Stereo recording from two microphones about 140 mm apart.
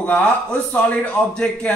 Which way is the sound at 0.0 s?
10° left (ahead or behind).